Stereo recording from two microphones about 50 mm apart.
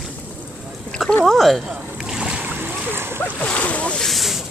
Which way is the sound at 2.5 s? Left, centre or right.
Right.